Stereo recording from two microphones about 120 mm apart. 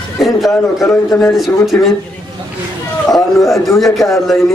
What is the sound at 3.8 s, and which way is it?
Speech, centre (ahead or behind).